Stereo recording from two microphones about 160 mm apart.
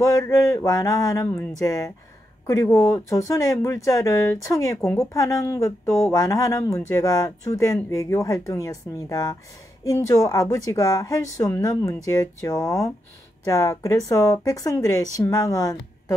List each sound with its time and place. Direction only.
0.0 s a woman's voice: 20° left (ahead or behind)